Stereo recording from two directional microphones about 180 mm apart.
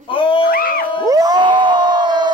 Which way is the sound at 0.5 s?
55° left (ahead or behind).